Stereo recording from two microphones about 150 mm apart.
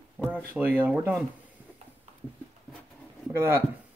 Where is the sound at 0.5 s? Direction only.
15° right (ahead or behind).